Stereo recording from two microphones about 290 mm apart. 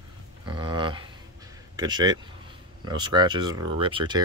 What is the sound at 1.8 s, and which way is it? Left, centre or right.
Speech, centre.